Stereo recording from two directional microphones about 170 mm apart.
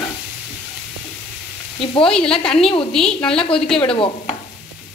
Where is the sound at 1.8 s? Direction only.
30° left (ahead or behind).